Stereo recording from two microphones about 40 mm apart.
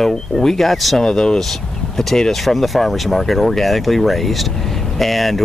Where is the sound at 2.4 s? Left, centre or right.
Centre.